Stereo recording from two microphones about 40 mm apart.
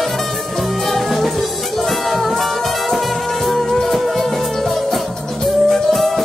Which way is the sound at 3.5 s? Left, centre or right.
Centre.